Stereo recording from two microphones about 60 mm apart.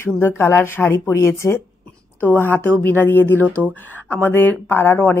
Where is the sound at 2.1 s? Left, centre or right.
Left.